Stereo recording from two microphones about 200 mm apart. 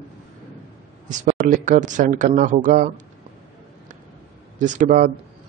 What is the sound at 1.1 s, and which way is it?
Speech, 40° right (ahead or behind).